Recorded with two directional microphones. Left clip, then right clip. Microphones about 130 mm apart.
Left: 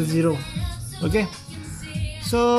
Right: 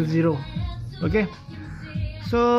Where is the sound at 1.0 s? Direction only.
20° left (ahead or behind).